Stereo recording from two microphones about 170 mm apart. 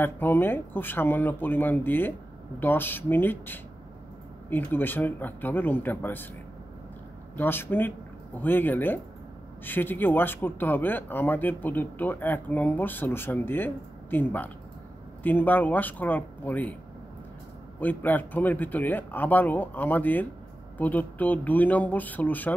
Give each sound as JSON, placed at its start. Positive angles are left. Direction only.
{"t": 0.0, "sound": "speech", "side_deg": 10}
{"t": 7.3, "sound": "speech", "side_deg": 10}
{"t": 17.7, "sound": "speech", "side_deg": 10}